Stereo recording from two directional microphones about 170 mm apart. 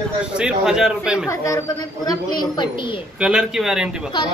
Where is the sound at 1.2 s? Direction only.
20° left (ahead or behind).